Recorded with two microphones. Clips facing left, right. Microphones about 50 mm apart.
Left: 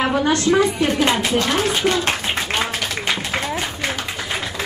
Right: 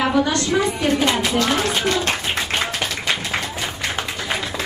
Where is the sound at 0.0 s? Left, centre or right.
Left.